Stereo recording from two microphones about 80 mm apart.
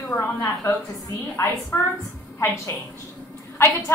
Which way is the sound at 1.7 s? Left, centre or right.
Left.